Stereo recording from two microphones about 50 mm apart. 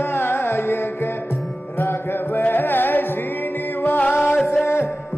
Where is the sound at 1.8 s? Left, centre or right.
Left.